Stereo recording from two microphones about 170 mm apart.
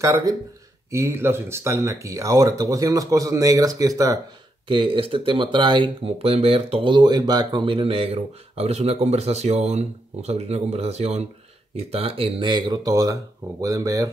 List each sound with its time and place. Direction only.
0.0 s speech: 20° right (ahead or behind)
4.6 s speech: 30° right (ahead or behind)